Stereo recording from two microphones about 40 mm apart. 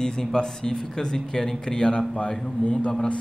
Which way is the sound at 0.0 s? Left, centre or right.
Centre.